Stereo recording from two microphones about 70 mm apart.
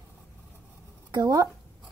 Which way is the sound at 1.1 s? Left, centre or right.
Right.